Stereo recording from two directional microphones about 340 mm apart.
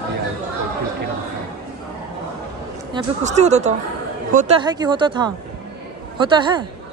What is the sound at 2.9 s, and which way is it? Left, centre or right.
Speech, centre.